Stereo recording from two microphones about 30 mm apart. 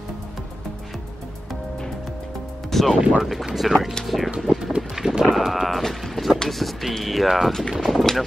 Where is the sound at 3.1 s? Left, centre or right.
Centre.